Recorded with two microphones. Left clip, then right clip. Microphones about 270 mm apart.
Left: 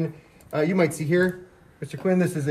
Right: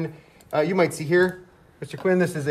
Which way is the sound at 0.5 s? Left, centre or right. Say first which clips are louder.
Right 2 dB; right.